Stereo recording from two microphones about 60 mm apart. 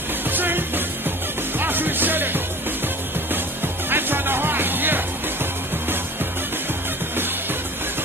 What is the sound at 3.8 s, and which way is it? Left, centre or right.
Music, right.